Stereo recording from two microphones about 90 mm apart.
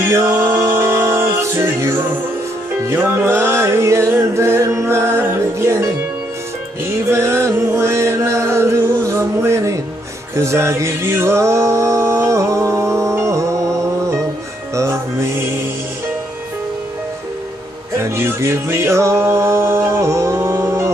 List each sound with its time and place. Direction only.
0.0 s music: 30° right (ahead or behind)
7.1 s music: 30° right (ahead or behind)
18.0 s music: 30° right (ahead or behind)